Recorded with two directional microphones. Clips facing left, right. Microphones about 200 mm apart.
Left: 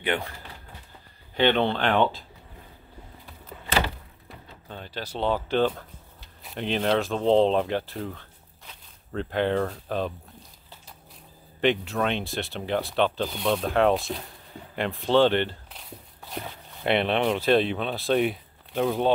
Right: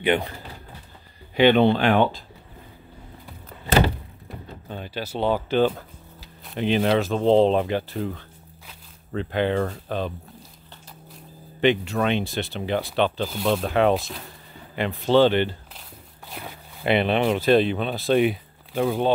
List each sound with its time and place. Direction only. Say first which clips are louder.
0.0 s speech: right 6 dB; 20° right (ahead or behind)
1.3 s speech: right 6 dB; 10° right (ahead or behind)
3.6 s door: right 6 dB; 45° right (ahead or behind)
4.6 s speech: right 4 dB; 10° right (ahead or behind)
11.6 s speech: right 3 dB; centre (ahead or behind)